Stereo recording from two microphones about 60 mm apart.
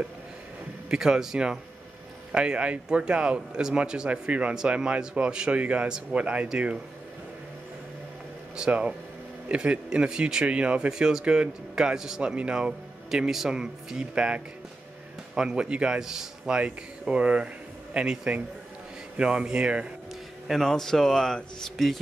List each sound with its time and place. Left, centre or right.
0.8 s speech: centre
8.5 s speech: centre
20.4 s speech: centre